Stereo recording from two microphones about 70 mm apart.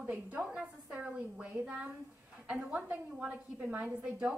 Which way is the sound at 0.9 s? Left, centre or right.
Right.